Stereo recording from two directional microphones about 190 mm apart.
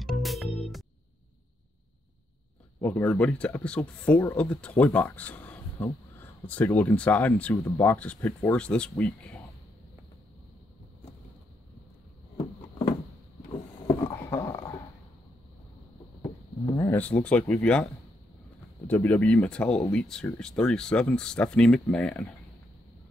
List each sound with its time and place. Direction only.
0.0 s music: centre (ahead or behind)
2.8 s speech: 10° left (ahead or behind)
12.4 s a sound: 25° left (ahead or behind)
14.0 s a sound: 15° left (ahead or behind)
16.7 s speech: 15° left (ahead or behind)
18.9 s speech: 10° left (ahead or behind)